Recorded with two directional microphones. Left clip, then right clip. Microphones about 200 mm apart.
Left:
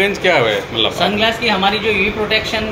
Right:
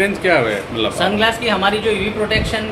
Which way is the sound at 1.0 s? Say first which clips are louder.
Right 2 dB; 20° right (ahead or behind).